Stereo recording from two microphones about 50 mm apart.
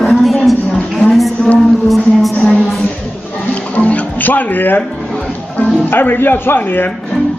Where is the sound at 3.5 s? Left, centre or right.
Left.